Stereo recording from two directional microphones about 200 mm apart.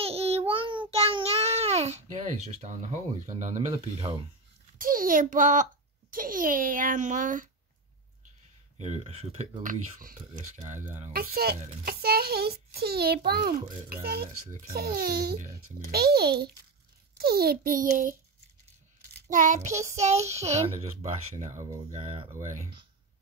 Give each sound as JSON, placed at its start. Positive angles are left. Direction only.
{"t": 0.0, "sound": "child singing", "side_deg": -30}
{"t": 4.7, "sound": "a child's voice", "side_deg": -45}
{"t": 8.7, "sound": "speech", "side_deg": -35}
{"t": 11.1, "sound": "a child's voice", "side_deg": -50}
{"t": 19.2, "sound": "speech", "side_deg": -40}